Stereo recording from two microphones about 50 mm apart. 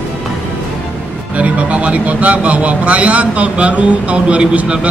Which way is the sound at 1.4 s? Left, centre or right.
Right.